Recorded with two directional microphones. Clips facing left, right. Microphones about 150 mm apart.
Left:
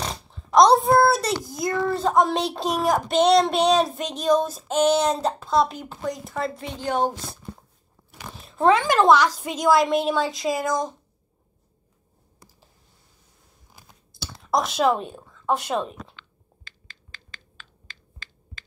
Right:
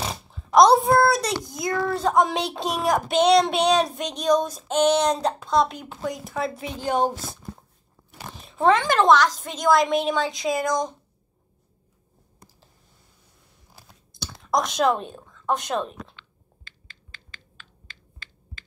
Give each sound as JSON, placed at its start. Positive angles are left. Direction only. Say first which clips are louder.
{"t": 0.0, "sound": "oink", "louder": "even", "side_deg": -5}
{"t": 1.9, "sound": "child singing", "louder": "even", "side_deg": 0}
{"t": 8.5, "sound": "child singing", "louder": "left 1 dB", "side_deg": 5}
{"t": 14.1, "sound": "speech", "louder": "even", "side_deg": 5}
{"t": 16.2, "sound": "finger snapping", "louder": "left 1 dB", "side_deg": 90}